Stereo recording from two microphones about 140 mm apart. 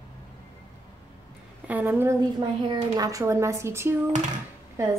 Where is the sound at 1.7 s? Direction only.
15° right (ahead or behind).